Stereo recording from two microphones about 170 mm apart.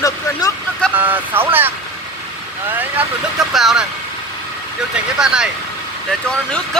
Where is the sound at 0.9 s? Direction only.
10° right (ahead or behind).